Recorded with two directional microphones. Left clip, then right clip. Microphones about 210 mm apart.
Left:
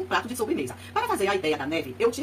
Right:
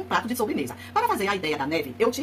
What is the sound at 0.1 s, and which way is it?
A woman's voice, 45° right (ahead or behind).